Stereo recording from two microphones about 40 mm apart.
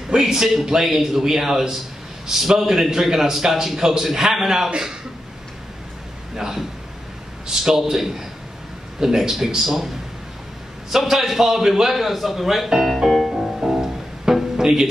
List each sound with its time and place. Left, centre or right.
0.1 s a man's voice: centre
4.6 s a man's voice: centre
6.3 s a man's voice: centre
10.9 s a man's voice: centre
12.8 s music: centre
14.6 s speech: centre